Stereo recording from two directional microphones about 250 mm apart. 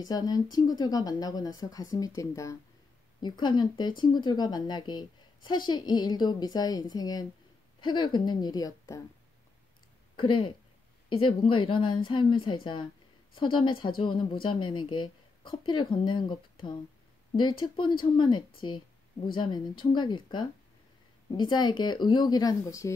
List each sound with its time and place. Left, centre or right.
0.0 s a woman's voice: centre
10.1 s a woman's voice: centre